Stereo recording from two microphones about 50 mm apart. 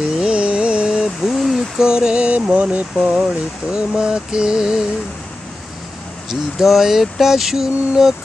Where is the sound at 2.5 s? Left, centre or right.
Right.